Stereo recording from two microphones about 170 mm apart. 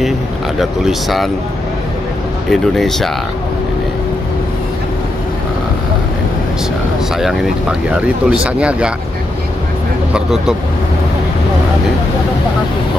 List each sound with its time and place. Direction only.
0.6 s speech: centre (ahead or behind)
2.5 s speech: centre (ahead or behind)
7.2 s speech: 5° right (ahead or behind)